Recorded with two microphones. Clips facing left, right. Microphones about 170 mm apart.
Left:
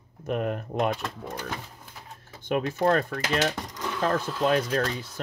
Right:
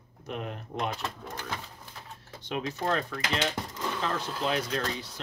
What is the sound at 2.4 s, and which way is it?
Speech, 50° left (ahead or behind).